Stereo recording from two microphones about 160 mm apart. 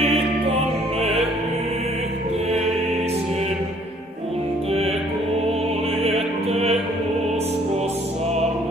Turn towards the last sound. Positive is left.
turn(degrees=-40)  # may be behind; listen again after turning